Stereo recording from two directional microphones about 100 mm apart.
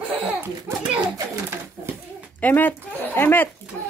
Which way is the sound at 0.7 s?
30° right (ahead or behind).